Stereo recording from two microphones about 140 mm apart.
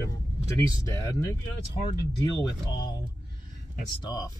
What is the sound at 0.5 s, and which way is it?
Speech, 25° left (ahead or behind).